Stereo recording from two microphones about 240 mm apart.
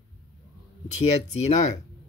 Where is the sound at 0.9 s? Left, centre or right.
Left.